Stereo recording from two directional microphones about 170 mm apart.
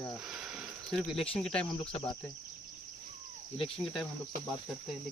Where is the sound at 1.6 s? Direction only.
30° left (ahead or behind).